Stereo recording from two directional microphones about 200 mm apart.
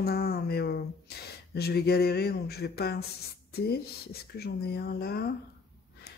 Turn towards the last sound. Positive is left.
turn(degrees=50)  # may be behind; listen again after turning